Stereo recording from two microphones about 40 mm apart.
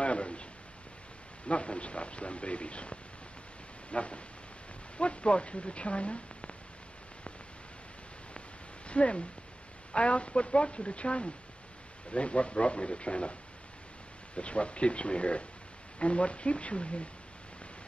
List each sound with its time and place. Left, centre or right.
0.0 s a man's voice: left
1.5 s speech: left
8.8 s speech: left